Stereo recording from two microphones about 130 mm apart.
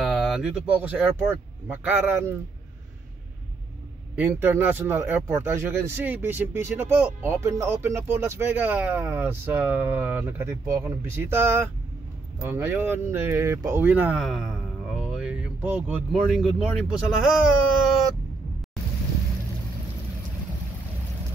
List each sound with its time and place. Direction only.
0.0 s speech: centre (ahead or behind); by 2.3 s 20° right (ahead or behind)
4.1 s speech: 15° right (ahead or behind)
14.2 s a sound: 5° right (ahead or behind)
16.1 s speech: centre (ahead or behind)